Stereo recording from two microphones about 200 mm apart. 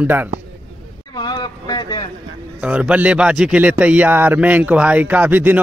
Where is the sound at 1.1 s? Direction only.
20° left (ahead or behind).